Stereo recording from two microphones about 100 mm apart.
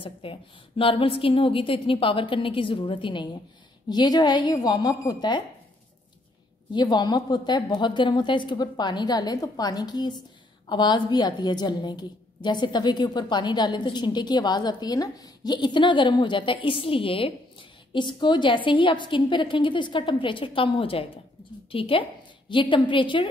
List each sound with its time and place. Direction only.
0.0 s a woman's voice: 65° left (ahead or behind)
3.9 s a woman's voice: 45° left (ahead or behind)
6.7 s a woman's voice: 45° left (ahead or behind); by 22.0 s 65° left (ahead or behind)
22.5 s a woman's voice: 55° left (ahead or behind)